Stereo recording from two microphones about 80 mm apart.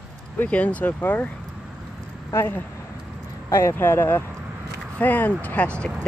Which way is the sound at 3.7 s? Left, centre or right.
Left.